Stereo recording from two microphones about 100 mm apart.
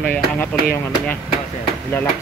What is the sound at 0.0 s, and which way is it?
Speech, 10° left (ahead or behind).